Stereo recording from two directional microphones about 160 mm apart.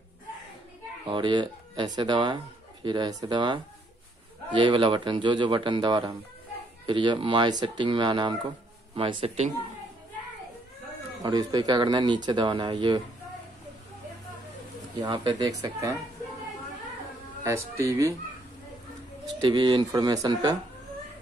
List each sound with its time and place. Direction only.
1.0 s speech: 30° right (ahead or behind)
11.2 s speech: 25° right (ahead or behind)
15.0 s speech: 25° right (ahead or behind)
17.4 s speech: 20° right (ahead or behind)
19.4 s speech: 30° right (ahead or behind)